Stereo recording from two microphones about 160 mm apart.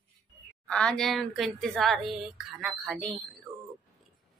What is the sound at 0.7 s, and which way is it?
A woman's voice, 5° left (ahead or behind).